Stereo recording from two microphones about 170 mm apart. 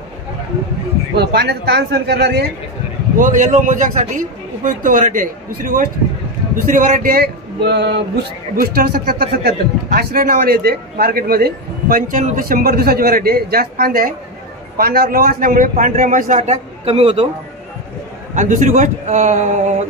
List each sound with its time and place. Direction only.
1.1 s speech: 80° right
3.2 s a man's voice: 50° right (ahead or behind)
18.3 s a man's voice: 50° right (ahead or behind)